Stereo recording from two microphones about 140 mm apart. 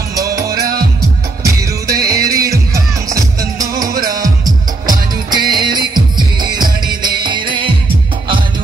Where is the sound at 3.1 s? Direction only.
25° right (ahead or behind).